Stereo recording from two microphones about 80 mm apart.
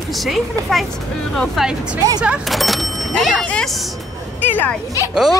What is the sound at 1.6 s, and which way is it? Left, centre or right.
Speech, centre.